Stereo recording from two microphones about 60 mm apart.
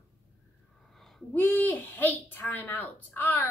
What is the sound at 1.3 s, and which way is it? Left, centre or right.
A child's voice, left.